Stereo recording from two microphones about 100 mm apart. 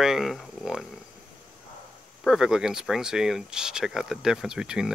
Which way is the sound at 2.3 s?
5° right (ahead or behind).